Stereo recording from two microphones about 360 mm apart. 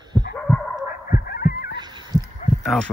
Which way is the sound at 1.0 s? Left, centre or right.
Left.